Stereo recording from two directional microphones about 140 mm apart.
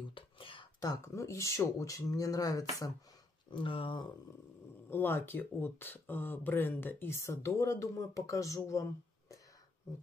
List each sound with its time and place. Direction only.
0.1 s speech: 40° left (ahead or behind)
3.5 s speech: 35° left (ahead or behind)
4.8 s speech: 15° left (ahead or behind)